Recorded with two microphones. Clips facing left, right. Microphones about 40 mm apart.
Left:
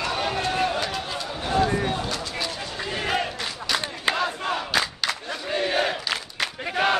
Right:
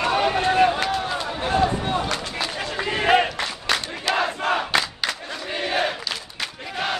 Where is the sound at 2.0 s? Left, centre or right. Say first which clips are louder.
Right 2 dB; right.